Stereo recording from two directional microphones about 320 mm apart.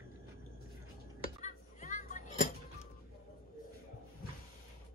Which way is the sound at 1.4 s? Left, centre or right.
Left.